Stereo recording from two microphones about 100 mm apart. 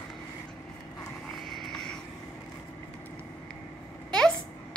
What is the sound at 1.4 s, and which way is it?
Vehicle, 5° left (ahead or behind).